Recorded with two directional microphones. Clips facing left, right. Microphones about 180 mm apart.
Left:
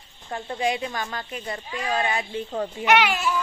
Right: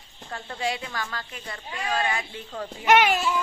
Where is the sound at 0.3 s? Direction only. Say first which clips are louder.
Left 4 dB; 20° left (ahead or behind).